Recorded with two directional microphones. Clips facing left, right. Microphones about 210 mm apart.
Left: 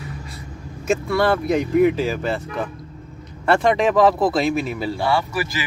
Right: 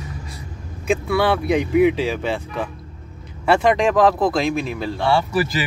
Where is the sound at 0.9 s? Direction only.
Centre (ahead or behind).